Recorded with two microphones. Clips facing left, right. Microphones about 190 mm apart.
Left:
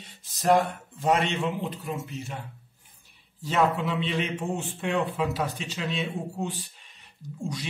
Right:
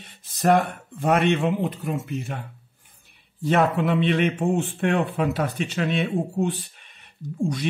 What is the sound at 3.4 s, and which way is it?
A man's voice, 60° right (ahead or behind).